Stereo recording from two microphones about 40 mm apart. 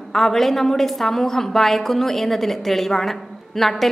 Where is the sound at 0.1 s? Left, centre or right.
Centre.